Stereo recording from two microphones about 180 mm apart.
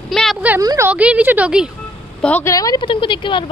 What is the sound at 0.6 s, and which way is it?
Speech, 20° right (ahead or behind).